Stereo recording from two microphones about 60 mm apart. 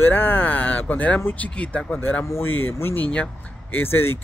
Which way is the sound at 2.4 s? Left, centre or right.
Left.